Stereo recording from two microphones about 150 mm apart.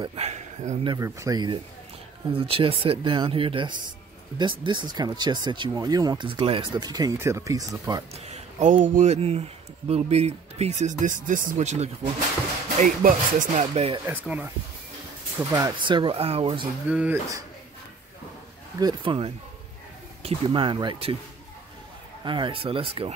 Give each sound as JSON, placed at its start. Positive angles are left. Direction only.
{"t": 0.0, "sound": "a sound", "side_deg": -40}
{"t": 0.8, "sound": "speech", "side_deg": -20}
{"t": 8.1, "sound": "speech", "side_deg": -50}
{"t": 12.8, "sound": "music", "side_deg": -60}
{"t": 13.7, "sound": "speech", "side_deg": -40}
{"t": 14.0, "sound": "speech", "side_deg": -10}
{"t": 15.7, "sound": "speech", "side_deg": -30}
{"t": 16.8, "sound": "speech", "side_deg": -10}
{"t": 18.8, "sound": "speech", "side_deg": -30}
{"t": 22.2, "sound": "speech", "side_deg": -30}